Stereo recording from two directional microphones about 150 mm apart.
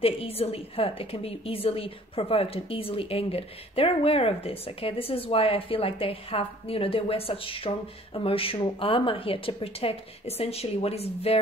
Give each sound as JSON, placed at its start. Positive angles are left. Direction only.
{"t": 0.0, "sound": "a woman's voice", "side_deg": 40}